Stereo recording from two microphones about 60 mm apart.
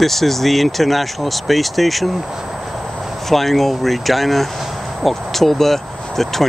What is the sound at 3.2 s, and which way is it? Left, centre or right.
Speech, centre.